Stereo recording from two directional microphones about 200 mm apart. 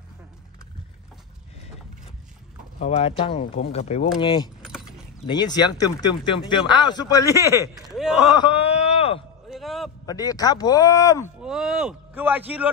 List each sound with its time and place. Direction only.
2.8 s speech: 30° left (ahead or behind)
4.6 s keys jangling: 5° right (ahead or behind)
5.2 s speech: 20° left (ahead or behind)
7.9 s speech: centre (ahead or behind)
8.4 s a sound: 25° left (ahead or behind)
9.5 s a sound: centre (ahead or behind)
10.0 s speech: 20° left (ahead or behind)
11.4 s speech: 5° right (ahead or behind)